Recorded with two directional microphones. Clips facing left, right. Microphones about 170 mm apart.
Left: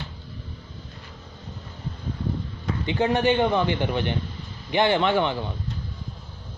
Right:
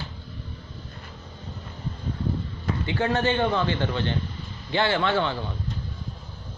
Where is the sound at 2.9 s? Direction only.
15° left (ahead or behind).